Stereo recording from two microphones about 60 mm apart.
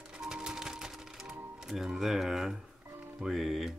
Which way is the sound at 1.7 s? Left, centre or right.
Centre.